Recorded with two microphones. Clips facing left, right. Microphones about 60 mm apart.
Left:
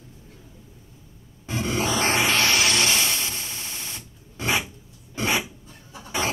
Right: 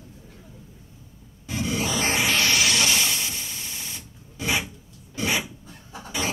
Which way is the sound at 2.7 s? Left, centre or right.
Centre.